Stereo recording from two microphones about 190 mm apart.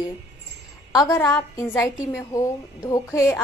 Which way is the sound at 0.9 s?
20° left (ahead or behind).